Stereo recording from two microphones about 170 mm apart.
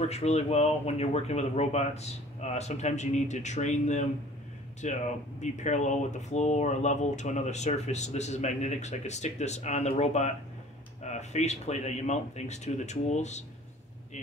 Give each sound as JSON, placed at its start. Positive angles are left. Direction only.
{"t": 0.1, "sound": "speech", "side_deg": 40}